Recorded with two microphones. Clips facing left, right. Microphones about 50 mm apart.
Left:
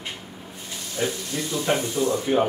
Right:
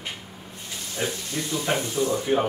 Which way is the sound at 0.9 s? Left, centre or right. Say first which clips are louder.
Left 2 dB; centre.